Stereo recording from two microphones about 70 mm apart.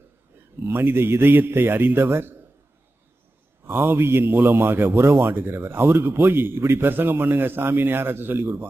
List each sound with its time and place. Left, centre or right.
0.7 s a man's voice: right
3.6 s a man's voice: right